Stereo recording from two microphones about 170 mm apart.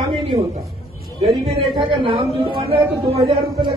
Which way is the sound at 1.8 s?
30° right (ahead or behind).